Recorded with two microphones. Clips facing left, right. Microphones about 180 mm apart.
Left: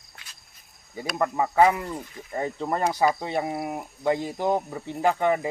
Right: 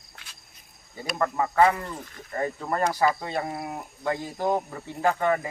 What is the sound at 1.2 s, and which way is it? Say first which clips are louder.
Speech: left 1 dB; 15° left (ahead or behind).